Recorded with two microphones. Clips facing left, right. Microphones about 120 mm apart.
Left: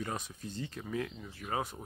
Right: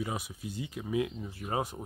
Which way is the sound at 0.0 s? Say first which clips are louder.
Right 3 dB; 10° right (ahead or behind).